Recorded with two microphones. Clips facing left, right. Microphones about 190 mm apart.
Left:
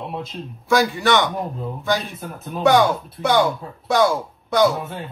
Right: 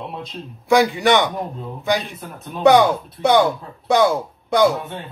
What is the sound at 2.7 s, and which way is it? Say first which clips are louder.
Speech: right 1 dB; 15° right (ahead or behind).